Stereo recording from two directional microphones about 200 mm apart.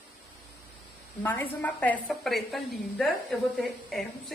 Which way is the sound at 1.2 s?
10° left (ahead or behind).